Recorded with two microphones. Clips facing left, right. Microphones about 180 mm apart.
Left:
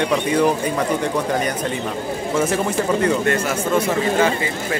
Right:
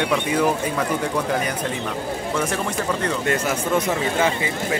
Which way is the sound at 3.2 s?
15° right (ahead or behind).